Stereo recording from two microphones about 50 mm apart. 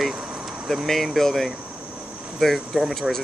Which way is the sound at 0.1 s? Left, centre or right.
Centre.